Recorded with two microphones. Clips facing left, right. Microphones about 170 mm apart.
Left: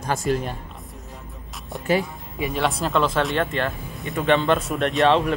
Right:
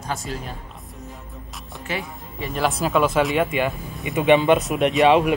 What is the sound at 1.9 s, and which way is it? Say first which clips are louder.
Speech: left 8 dB; 40° left (ahead or behind).